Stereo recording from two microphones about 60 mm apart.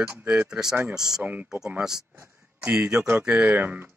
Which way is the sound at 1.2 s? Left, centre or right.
Right.